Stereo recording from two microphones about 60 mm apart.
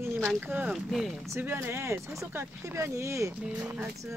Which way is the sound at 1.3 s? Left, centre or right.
Right.